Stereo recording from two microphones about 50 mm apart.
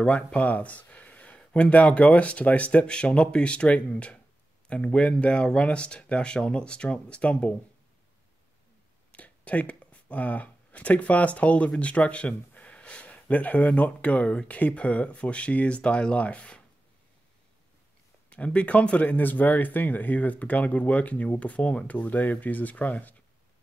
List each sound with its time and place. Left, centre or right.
0.0 s speech: left
9.1 s speech: left
18.3 s speech: left